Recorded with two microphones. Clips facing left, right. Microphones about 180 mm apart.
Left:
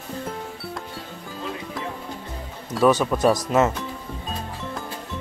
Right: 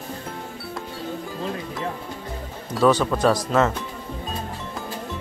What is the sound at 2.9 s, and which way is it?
Speech, 20° left (ahead or behind).